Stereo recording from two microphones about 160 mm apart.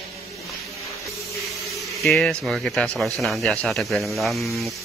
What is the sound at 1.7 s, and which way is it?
Speech, centre (ahead or behind).